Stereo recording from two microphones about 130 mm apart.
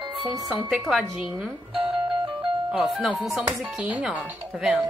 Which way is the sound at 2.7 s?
Centre (ahead or behind).